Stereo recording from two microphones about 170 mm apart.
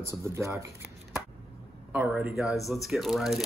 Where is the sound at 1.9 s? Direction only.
5° right (ahead or behind).